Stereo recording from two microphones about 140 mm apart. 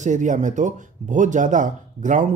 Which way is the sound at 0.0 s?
60° right (ahead or behind).